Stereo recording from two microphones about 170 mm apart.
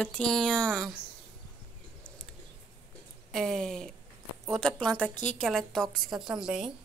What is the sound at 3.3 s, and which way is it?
A woman's voice, centre (ahead or behind).